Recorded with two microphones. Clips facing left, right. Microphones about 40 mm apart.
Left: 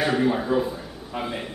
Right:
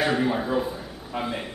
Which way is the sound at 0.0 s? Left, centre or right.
Centre.